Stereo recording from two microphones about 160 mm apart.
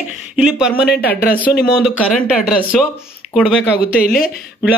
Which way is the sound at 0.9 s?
70° left (ahead or behind).